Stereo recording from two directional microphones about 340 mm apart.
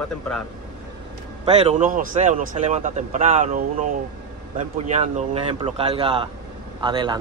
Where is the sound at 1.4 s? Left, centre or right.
Centre.